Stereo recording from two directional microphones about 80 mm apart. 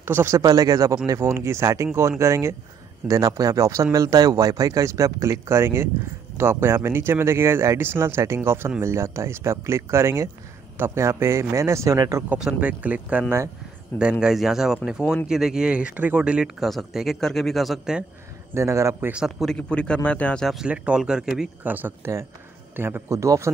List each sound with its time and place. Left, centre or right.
0.0 s speech: right
0.4 s speech: right
12.5 s speech: centre
13.9 s speech: left
14.2 s speech: centre
16.5 s speech: centre
18.5 s speech: right
19.4 s a man's voice: centre
20.6 s speech: centre
21.6 s speech: right